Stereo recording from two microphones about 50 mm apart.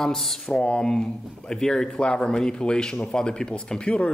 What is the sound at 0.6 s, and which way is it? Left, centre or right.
Speech, centre.